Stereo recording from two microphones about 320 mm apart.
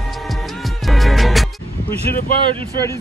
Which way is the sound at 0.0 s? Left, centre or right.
Centre.